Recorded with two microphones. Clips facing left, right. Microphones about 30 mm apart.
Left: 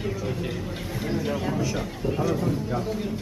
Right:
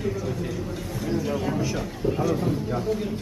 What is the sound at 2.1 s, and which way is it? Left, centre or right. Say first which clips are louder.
Speech: right 1 dB; centre.